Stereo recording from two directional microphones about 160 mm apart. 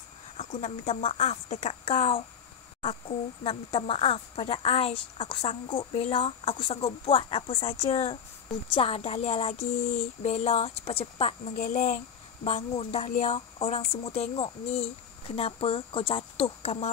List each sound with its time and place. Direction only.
0.4 s speech: 50° left (ahead or behind)